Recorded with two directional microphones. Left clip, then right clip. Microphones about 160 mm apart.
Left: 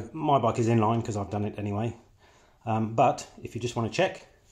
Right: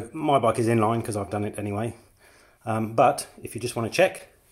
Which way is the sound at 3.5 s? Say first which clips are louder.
Right 2 dB; 55° right (ahead or behind).